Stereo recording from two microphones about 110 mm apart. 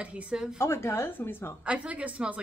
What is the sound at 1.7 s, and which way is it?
Speech, 10° right (ahead or behind).